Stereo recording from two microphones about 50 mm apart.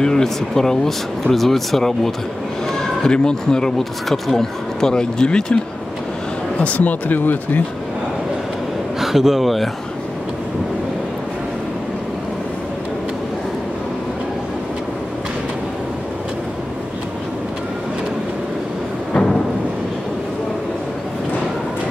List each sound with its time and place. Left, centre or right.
0.0 s speech: centre
6.6 s speech: left
9.0 s speech: centre